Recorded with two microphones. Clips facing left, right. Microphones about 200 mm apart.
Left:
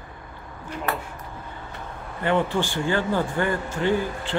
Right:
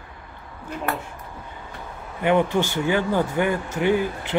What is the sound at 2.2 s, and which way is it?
Speech, 15° right (ahead or behind).